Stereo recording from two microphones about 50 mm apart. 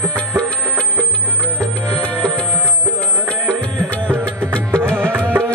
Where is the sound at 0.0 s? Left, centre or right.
Left.